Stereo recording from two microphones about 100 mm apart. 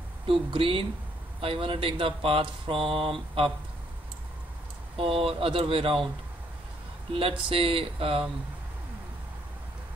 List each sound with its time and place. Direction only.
0.3 s speech: 65° right (ahead or behind)
4.9 s speech: 65° right (ahead or behind)
7.2 s speech: 65° right (ahead or behind)